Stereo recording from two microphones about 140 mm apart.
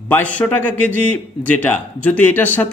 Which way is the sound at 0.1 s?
10° left (ahead or behind).